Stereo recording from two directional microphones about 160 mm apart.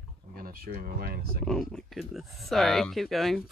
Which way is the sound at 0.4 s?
65° right (ahead or behind).